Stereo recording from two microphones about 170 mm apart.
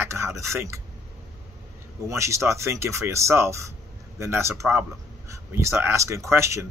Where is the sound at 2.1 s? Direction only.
15° right (ahead or behind).